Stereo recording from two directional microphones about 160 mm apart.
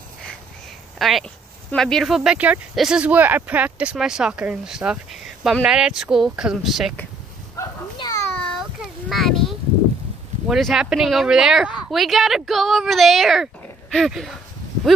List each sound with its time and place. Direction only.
0.9 s speech: centre (ahead or behind)
7.5 s a sound: 20° left (ahead or behind)
9.1 s speech: centre (ahead or behind)